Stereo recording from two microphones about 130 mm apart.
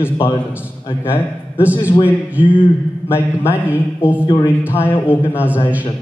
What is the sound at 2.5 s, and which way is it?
A man's voice, 15° left (ahead or behind).